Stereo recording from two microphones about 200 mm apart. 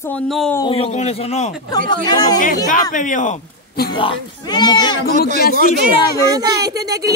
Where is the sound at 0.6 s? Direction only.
25° left (ahead or behind).